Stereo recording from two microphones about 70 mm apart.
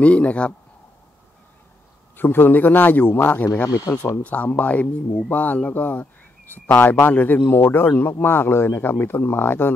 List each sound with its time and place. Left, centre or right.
0.0 s speech: centre
2.1 s speech: left
3.6 s speech: left
4.2 s speech: left